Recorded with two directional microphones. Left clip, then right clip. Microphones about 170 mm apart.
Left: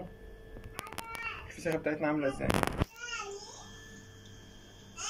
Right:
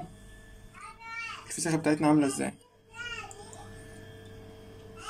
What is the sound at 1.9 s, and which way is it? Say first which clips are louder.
Speech: right 9 dB; 65° right (ahead or behind).